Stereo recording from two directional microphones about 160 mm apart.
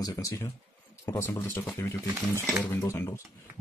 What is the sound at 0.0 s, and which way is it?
Speech, 20° left (ahead or behind).